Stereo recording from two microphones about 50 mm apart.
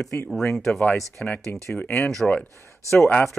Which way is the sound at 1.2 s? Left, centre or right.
Left.